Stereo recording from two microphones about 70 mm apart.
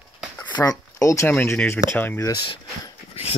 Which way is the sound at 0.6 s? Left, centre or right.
Left.